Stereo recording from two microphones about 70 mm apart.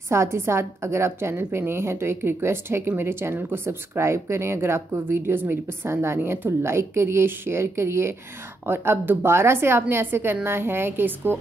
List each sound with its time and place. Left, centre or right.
0.1 s a woman's voice: right